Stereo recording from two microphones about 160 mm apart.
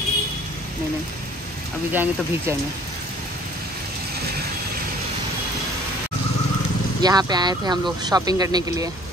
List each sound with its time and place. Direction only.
1.9 s speech: 10° right (ahead or behind)
7.0 s speech: 25° right (ahead or behind)